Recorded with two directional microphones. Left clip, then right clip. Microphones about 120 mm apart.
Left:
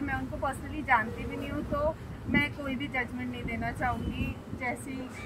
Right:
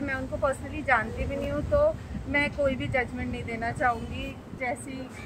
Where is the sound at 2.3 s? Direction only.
20° right (ahead or behind).